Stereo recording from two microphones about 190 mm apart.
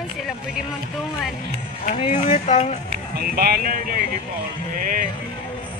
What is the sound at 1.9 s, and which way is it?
Speech, 40° left (ahead or behind).